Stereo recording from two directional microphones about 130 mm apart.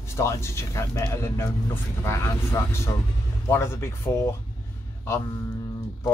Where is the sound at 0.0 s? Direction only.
20° left (ahead or behind).